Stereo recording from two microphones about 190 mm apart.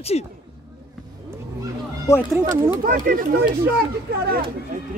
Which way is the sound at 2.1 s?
15° left (ahead or behind).